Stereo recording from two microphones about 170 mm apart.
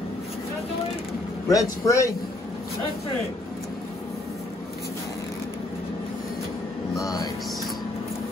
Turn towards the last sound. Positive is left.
turn(degrees=25)  # may be behind; listen again after turning